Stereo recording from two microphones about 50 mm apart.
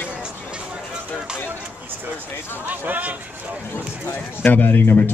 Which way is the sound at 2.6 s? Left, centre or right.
Right.